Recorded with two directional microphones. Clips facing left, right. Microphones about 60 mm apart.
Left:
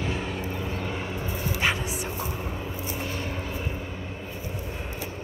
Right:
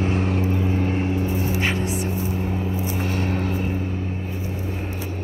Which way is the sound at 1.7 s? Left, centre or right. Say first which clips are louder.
Right 7 dB; right.